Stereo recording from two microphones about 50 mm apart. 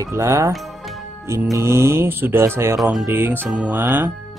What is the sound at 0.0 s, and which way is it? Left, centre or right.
Speech, right.